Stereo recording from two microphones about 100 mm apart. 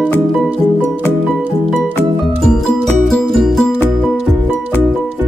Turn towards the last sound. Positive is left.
turn(degrees=5)  # may be behind; listen again after turning